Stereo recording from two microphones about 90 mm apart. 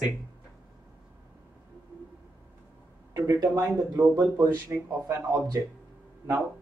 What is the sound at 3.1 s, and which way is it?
Speech, 35° right (ahead or behind).